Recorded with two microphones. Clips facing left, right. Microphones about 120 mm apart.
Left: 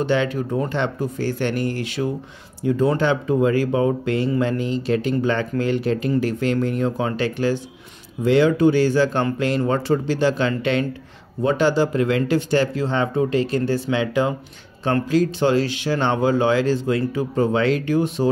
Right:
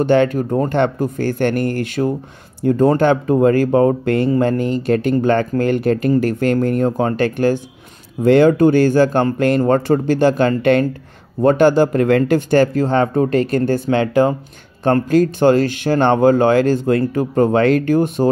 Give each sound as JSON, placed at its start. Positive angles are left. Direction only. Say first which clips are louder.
{"t": 0.0, "sound": "speech", "louder": "right 7 dB", "side_deg": -50}